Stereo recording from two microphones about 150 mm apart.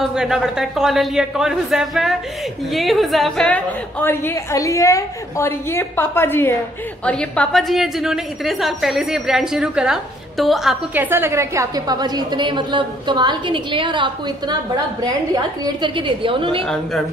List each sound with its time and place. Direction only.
0.0 s a woman's voice: 5° right (ahead or behind)
11.0 s a woman's voice: 15° right (ahead or behind); by 16.6 s 35° right (ahead or behind)
16.6 s a woman's voice: 5° left (ahead or behind)